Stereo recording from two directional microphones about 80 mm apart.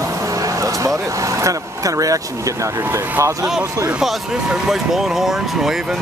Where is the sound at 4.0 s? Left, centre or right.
Centre.